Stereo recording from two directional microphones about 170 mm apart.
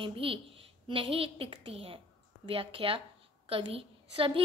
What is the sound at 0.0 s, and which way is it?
A woman's voice, 30° right (ahead or behind).